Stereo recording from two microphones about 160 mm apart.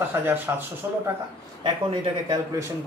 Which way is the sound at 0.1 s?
10° right (ahead or behind).